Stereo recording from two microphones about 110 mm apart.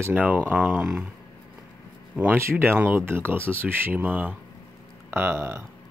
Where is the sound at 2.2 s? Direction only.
20° right (ahead or behind).